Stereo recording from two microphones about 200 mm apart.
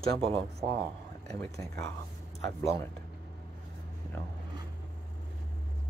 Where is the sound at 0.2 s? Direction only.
25° right (ahead or behind).